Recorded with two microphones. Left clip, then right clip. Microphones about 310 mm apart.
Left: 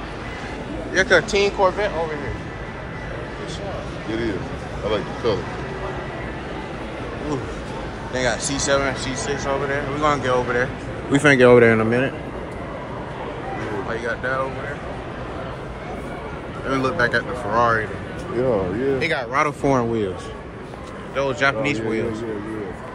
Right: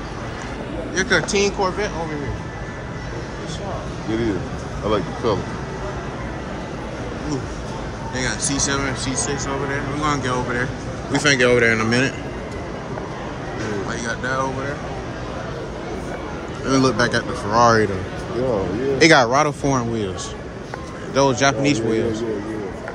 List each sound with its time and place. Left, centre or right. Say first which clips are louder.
0.9 s speech: left 2 dB; centre
4.8 s speech: right 1 dB; right
8.1 s speech: left 2 dB; centre
11.1 s speech: left 3 dB; centre
13.8 s speech: left 3 dB; centre
16.6 s speech: right 2 dB; centre
18.9 s speech: right 10 dB; right
19.3 s speech: right 1 dB; centre
21.1 s speech: right 3 dB; centre